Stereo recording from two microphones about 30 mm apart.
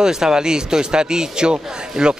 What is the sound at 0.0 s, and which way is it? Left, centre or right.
A man's voice, right.